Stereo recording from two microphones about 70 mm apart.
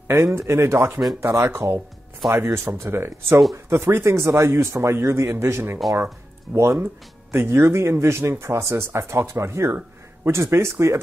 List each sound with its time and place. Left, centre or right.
0.1 s speech: right